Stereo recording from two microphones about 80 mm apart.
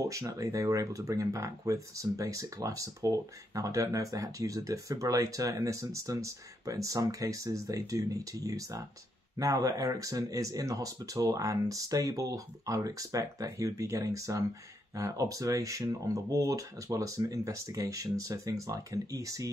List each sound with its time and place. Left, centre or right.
0.0 s speech: right